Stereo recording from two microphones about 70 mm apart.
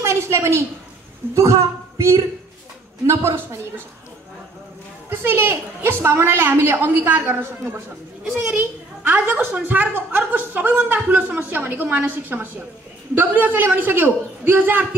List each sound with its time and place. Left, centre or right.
0.0 s a sound: right
1.3 s a woman's voice: right
5.1 s a woman's voice: right
8.2 s a child's voice: centre
9.0 s a woman's voice: right